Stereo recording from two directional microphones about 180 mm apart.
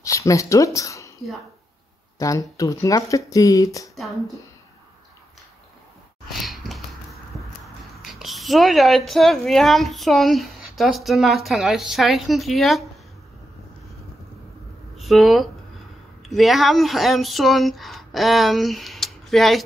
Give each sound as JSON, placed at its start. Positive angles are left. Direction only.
{"t": 0.0, "sound": "speech", "side_deg": 15}
{"t": 2.1, "sound": "speech", "side_deg": 20}
{"t": 6.3, "sound": "a sound", "side_deg": 0}
{"t": 15.0, "sound": "speech", "side_deg": 0}